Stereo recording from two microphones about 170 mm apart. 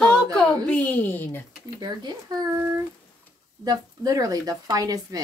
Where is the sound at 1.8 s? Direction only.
25° right (ahead or behind).